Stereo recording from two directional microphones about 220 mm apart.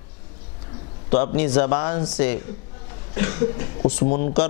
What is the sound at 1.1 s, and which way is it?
A man's voice, 10° left (ahead or behind).